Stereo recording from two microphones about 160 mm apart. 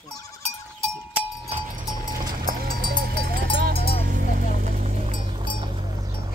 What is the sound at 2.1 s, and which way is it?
Sheep, 60° right (ahead or behind).